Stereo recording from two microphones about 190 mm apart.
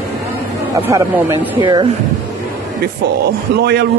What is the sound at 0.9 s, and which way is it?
Speech, 15° right (ahead or behind).